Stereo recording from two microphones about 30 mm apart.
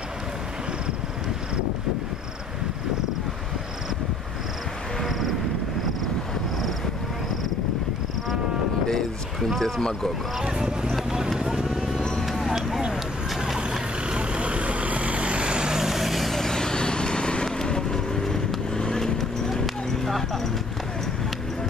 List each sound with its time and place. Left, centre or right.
5.0 s vehicle: centre
9.4 s speech: centre
11.3 s vehicle: centre
12.2 s a sound: centre
12.4 s run: centre
14.0 s vehicle: right
15.8 s vehicle: centre
16.3 s vehicle: centre
19.5 s clip-clop: centre